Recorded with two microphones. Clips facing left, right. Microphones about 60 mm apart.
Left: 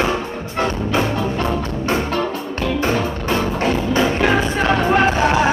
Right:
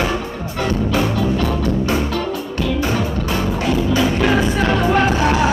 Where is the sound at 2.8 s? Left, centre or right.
Left.